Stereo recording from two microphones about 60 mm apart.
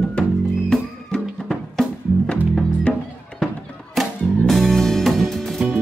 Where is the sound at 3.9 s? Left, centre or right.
Centre.